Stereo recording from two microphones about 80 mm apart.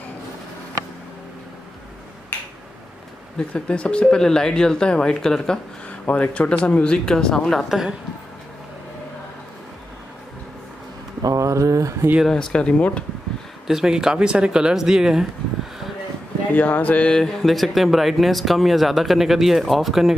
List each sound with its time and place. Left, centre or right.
3.3 s speech: centre
11.2 s a sound: right
12.3 s speech: centre
13.7 s speech: centre
16.5 s speech: left; by 20.2 s centre